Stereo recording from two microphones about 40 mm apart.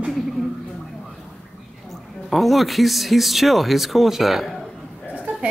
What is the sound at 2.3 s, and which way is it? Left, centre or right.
Speech, centre.